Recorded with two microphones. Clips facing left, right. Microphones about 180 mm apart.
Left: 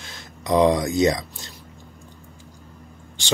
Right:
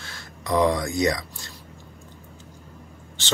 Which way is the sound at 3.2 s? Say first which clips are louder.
Left 3 dB; 15° left (ahead or behind).